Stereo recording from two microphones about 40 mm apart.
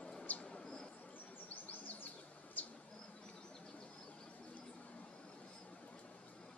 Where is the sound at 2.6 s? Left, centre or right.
Left.